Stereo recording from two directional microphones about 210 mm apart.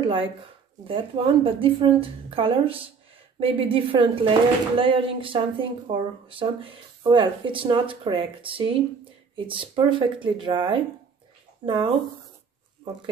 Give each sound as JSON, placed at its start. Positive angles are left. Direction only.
{"t": 0.0, "sound": "a woman's voice", "side_deg": -25}